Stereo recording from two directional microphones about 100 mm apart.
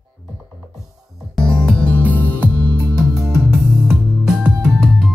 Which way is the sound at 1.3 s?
10° left (ahead or behind).